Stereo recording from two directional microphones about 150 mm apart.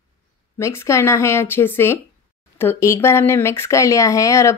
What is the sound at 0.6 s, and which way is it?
A woman's voice, 20° left (ahead or behind).